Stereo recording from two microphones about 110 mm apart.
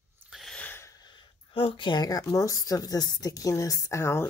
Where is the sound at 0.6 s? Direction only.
15° left (ahead or behind).